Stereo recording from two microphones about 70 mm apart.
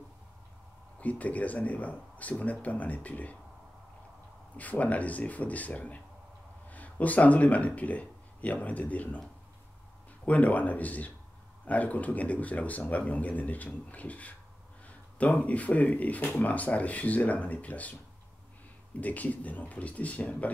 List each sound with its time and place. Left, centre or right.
0.9 s speech: left
4.6 s a man's voice: left
10.2 s speech: left
18.9 s speech: left